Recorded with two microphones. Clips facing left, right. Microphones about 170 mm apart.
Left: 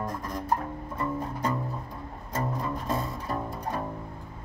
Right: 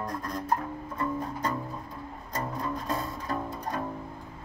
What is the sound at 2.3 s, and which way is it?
Music, 5° left (ahead or behind).